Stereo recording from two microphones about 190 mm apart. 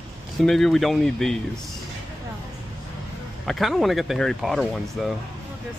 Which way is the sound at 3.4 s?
Centre (ahead or behind).